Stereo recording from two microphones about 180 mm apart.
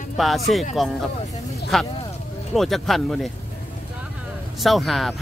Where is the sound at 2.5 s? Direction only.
Centre (ahead or behind).